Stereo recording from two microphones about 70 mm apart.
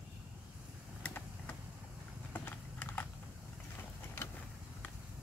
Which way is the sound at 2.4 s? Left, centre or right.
Left.